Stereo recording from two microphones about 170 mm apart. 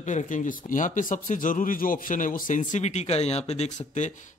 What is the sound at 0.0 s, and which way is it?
A man's voice, 45° left (ahead or behind).